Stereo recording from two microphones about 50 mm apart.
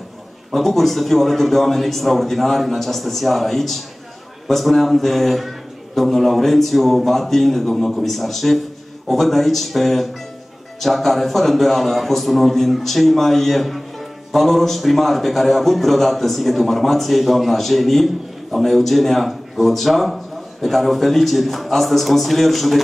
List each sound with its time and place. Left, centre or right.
0.5 s a man's voice: centre